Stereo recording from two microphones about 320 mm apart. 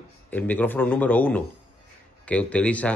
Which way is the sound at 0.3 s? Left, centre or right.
Centre.